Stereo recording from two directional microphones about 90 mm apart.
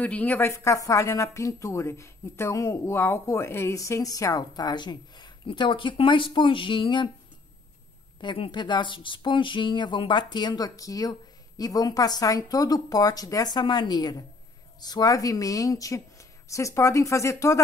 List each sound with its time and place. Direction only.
0.0 s a woman's voice: 15° left (ahead or behind)
0.5 s speech: 35° left (ahead or behind); by 7.1 s 65° left (ahead or behind)
8.2 s speech: 65° left (ahead or behind); by 17.6 s 35° left (ahead or behind)